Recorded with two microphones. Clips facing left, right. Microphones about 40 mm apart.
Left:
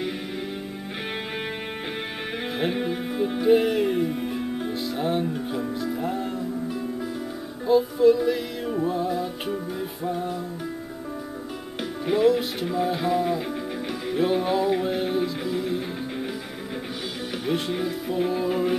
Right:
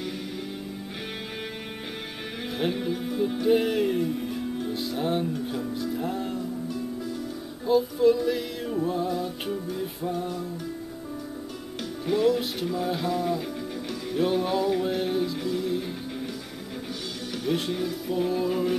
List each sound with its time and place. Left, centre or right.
2.7 s music: left
3.5 s music: centre; by 4.7 s left
4.7 s speech: centre
5.3 s music: centre
7.6 s music: centre
12.1 s music: centre
17.5 s music: centre